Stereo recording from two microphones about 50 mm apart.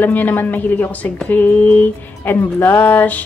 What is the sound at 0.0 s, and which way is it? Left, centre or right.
A woman's voice, left.